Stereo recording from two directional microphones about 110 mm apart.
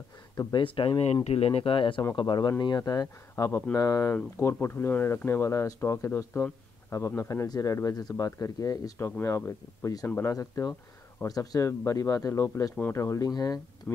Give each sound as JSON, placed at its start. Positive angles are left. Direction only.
{"t": 0.4, "sound": "speech", "side_deg": 45}
{"t": 1.1, "sound": "speech", "side_deg": 65}
{"t": 7.4, "sound": "speech", "side_deg": 35}
{"t": 8.9, "sound": "speech", "side_deg": 20}
{"t": 13.9, "sound": "speech", "side_deg": 20}